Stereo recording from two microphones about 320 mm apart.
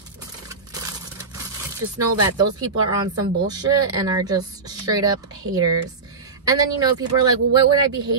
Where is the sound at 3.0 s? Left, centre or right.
Centre.